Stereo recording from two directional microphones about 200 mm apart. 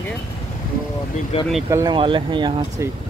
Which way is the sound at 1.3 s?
30° left (ahead or behind).